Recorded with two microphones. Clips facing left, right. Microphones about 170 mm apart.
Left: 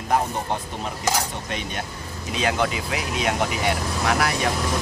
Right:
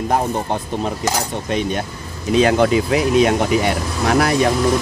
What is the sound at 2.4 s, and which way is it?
Speech, 40° right (ahead or behind).